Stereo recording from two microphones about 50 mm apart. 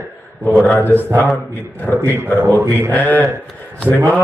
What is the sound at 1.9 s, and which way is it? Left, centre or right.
Speech, left.